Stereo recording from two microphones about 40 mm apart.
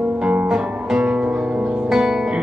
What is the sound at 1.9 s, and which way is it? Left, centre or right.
Music, centre.